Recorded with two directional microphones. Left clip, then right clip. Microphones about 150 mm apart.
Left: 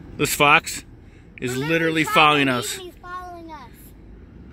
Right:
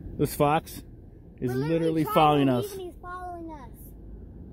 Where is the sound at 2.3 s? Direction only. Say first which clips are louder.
Left 5 dB; 20° right (ahead or behind).